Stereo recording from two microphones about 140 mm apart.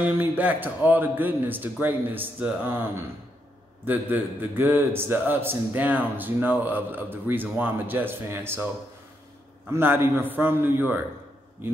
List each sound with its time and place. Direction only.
0.0 s a man's voice: 10° right (ahead or behind)
9.7 s a man's voice: 15° right (ahead or behind)